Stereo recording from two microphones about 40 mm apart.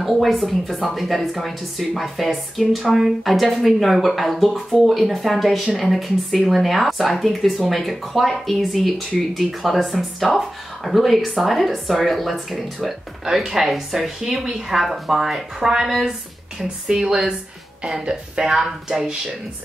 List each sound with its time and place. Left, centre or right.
0.0 s speech: centre
13.2 s speech: centre
18.4 s speech: centre